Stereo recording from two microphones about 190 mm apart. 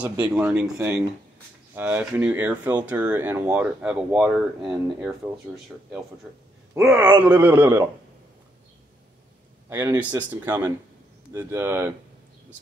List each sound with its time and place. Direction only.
0.0 s speech: 5° right (ahead or behind)
6.7 s speech: 15° right (ahead or behind)
9.7 s speech: 10° right (ahead or behind)